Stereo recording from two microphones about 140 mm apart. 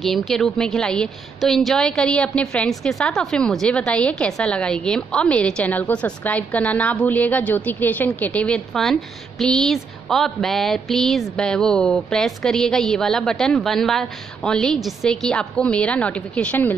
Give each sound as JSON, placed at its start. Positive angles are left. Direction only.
{"t": 0.0, "sound": "a woman's voice", "side_deg": 0}